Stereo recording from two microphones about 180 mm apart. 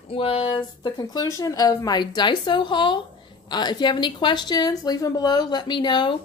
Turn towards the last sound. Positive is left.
turn(degrees=25)  # may be behind; listen again after turning